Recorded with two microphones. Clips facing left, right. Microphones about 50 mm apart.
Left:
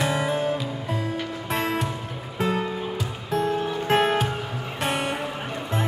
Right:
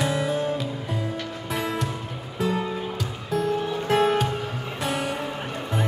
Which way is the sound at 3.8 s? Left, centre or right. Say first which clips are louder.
Even; left.